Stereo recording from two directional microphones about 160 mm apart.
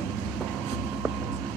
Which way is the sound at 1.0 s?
5° right (ahead or behind).